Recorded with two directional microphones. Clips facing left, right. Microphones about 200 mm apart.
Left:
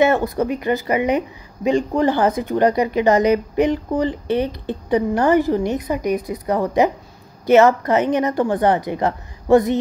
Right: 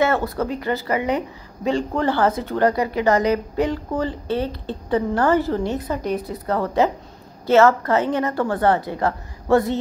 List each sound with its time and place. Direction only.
0.0 s a woman's voice: 15° left (ahead or behind)